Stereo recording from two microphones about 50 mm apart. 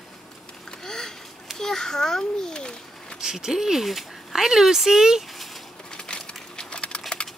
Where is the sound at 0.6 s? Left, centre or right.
Centre.